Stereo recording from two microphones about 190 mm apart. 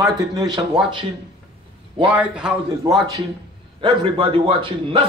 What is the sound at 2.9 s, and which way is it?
A man's voice, 20° right (ahead or behind).